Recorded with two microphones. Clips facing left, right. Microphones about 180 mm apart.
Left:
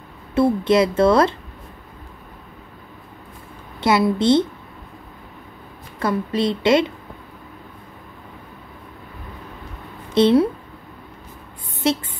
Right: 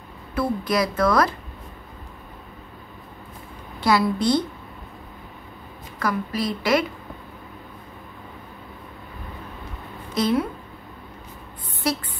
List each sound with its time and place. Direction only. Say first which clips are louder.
0.3 s speech: left 7 dB; 25° left (ahead or behind)
3.8 s speech: left 3 dB; 25° left (ahead or behind)
5.9 s speech: left 4 dB; 25° left (ahead or behind)
10.1 s a woman's voice: left 7 dB; 30° left (ahead or behind)
11.8 s speech: left 5 dB; 25° left (ahead or behind)